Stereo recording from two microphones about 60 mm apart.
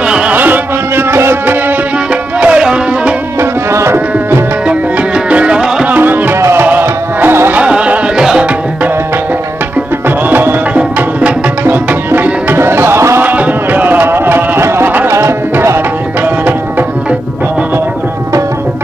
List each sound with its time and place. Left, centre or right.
0.0 s music: centre
0.3 s music: right
2.4 s music: centre
3.3 s tabla: right
4.6 s music: centre
5.9 s music: right
7.5 s music: centre
10.0 s music: right
11.0 s music: right
11.6 s music: right
13.2 s music: right